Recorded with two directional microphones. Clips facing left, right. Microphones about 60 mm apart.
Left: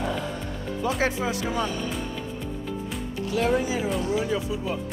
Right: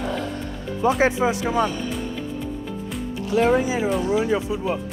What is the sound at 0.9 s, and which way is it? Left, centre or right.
Speech, right.